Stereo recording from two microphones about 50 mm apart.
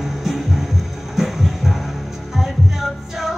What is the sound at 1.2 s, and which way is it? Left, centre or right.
Music, centre.